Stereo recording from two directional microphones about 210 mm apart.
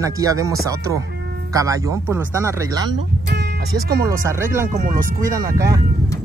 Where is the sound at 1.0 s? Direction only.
50° right (ahead or behind).